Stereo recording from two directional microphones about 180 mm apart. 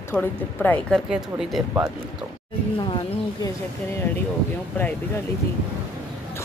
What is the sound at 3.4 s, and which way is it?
Speech, 15° left (ahead or behind).